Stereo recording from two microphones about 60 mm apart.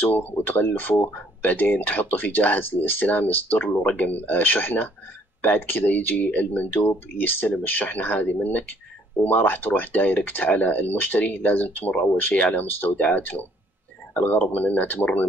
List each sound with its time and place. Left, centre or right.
0.0 s speech: left
14.4 s speech: left